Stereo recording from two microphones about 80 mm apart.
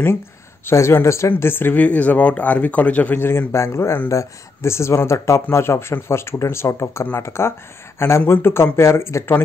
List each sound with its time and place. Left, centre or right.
0.7 s speech: left
3.2 s speech: left